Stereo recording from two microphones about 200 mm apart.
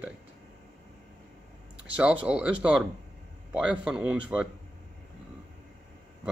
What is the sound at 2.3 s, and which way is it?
Speech, 5° right (ahead or behind).